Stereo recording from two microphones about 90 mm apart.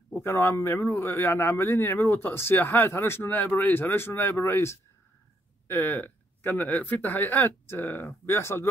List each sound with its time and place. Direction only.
0.1 s speech: 25° left (ahead or behind)